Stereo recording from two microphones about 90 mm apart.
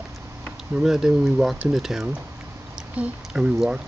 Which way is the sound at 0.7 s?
5° right (ahead or behind).